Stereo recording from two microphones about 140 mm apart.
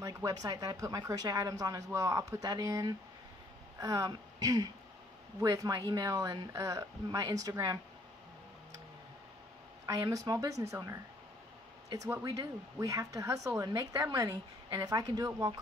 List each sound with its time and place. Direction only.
0.0 s speech: 25° right (ahead or behind)
9.8 s speech: 25° right (ahead or behind)
12.1 s speech: 25° right (ahead or behind)